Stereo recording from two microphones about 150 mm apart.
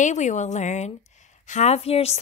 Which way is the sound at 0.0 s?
55° left (ahead or behind).